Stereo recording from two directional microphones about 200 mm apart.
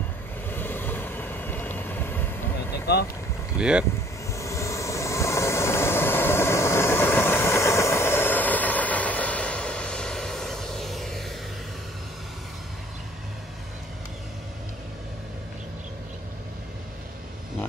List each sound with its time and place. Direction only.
0.5 s vehicle: 10° left (ahead or behind)
2.9 s speech: 55° left (ahead or behind)
3.5 s speech: 5° right (ahead or behind)
4.3 s vehicle: 15° left (ahead or behind)